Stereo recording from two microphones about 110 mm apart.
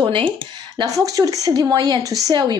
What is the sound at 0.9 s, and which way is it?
Speech, 30° right (ahead or behind).